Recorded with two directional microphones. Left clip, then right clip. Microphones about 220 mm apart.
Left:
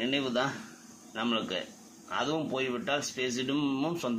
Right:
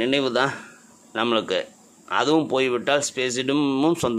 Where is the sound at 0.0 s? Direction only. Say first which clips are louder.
Right 9 dB; 50° right (ahead or behind).